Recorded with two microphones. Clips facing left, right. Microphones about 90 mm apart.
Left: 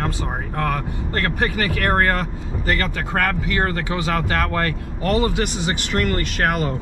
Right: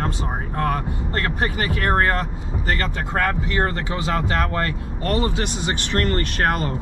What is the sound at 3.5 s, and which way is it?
Speech, 25° right (ahead or behind).